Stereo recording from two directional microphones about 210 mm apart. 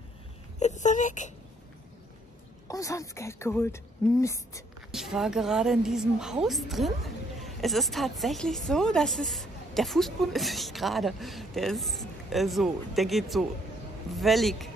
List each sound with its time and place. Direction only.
0.6 s speech: 35° left (ahead or behind)
2.7 s speech: 15° left (ahead or behind)
4.9 s speech: centre (ahead or behind)